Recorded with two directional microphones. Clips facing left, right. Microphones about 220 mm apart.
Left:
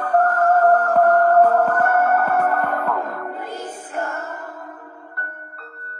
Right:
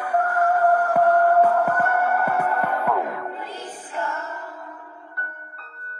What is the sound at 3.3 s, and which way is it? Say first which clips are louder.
Music: left 4 dB; 50° left (ahead or behind).